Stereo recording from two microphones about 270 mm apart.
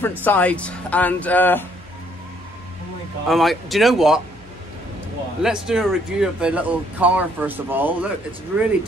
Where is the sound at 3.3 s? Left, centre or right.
Centre.